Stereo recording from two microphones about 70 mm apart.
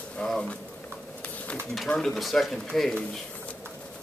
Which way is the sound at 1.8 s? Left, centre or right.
Centre.